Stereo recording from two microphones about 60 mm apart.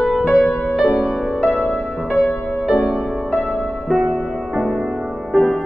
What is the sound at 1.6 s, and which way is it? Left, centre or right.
Music, centre.